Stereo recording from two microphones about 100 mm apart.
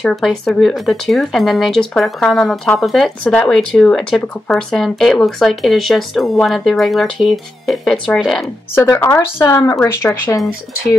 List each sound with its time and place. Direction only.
0.0 s speech: 5° left (ahead or behind)
3.3 s speech: 15° left (ahead or behind)
8.7 s speech: 25° left (ahead or behind)
9.4 s speech: 40° left (ahead or behind)
10.0 s speech: 25° left (ahead or behind)